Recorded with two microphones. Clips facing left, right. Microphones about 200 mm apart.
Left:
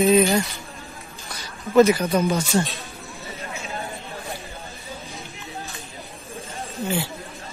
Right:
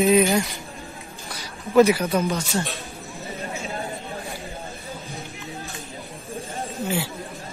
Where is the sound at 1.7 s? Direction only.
10° right (ahead or behind).